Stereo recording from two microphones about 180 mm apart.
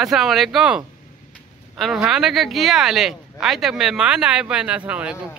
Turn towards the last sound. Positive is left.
turn(degrees=-5)  # may be behind; listen again after turning